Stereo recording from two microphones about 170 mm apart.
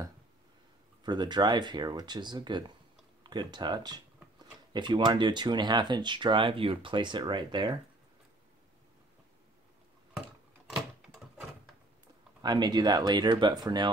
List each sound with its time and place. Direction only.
1.0 s speech: 25° right (ahead or behind)
10.8 s door: centre (ahead or behind)
12.4 s speech: 25° right (ahead or behind)